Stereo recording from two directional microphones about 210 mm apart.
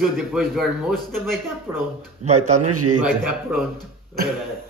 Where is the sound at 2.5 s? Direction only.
90° right.